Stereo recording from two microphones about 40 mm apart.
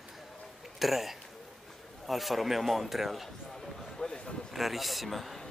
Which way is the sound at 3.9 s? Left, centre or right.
Centre.